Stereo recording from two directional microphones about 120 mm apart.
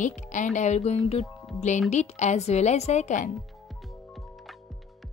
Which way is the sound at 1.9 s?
70° left (ahead or behind).